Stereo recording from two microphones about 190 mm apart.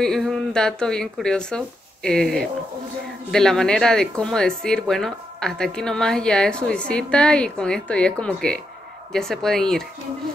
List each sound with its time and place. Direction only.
0.0 s speech: centre (ahead or behind)